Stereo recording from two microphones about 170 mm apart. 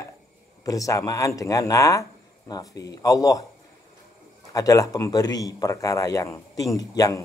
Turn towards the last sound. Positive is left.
turn(degrees=20)  # may be behind; listen again after turning